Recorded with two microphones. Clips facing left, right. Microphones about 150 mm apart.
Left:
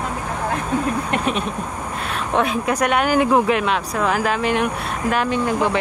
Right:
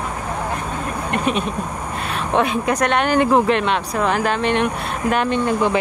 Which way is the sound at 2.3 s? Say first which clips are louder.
Right 1 dB; centre (ahead or behind).